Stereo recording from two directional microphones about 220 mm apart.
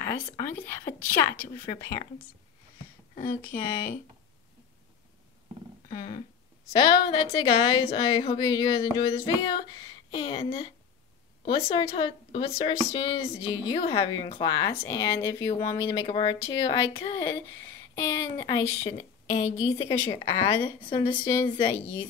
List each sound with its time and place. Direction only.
0.0 s speech: 10° left (ahead or behind)
5.9 s a sound: 35° left (ahead or behind)
6.8 s a woman's voice: 20° left (ahead or behind)